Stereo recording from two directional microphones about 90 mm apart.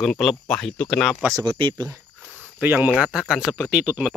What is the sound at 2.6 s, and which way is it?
Speech, 20° right (ahead or behind).